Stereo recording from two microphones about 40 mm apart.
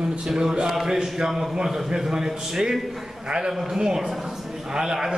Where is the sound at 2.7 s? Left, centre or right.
Centre.